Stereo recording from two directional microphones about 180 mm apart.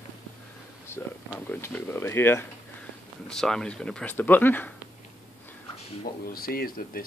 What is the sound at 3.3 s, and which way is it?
Speech, 5° left (ahead or behind).